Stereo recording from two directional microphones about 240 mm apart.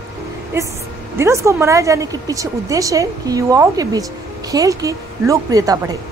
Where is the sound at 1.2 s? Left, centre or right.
Centre.